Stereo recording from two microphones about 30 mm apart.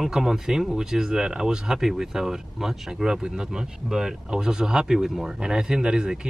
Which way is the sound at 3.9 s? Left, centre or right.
Right.